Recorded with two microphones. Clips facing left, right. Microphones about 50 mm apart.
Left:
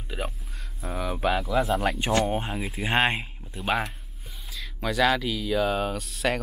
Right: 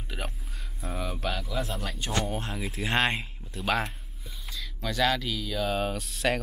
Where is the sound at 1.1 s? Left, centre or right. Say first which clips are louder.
Left 10 dB; centre.